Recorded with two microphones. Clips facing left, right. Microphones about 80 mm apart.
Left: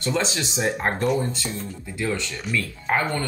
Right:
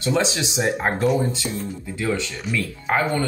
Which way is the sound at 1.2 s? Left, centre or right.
Centre.